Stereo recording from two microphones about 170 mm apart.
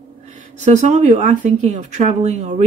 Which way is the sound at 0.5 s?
45° right (ahead or behind).